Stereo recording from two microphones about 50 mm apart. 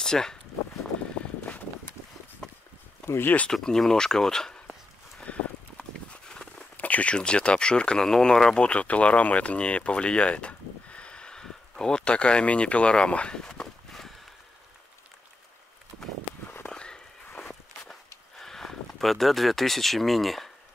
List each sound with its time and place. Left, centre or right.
0.0 s speech: centre
3.5 s speech: centre
5.3 s clip-clop: left
6.0 s a sound: centre
6.8 s speech: left; by 8.6 s centre
8.6 s speech: left
16.6 s a sound: centre
17.4 s walk: centre
18.4 s speech: centre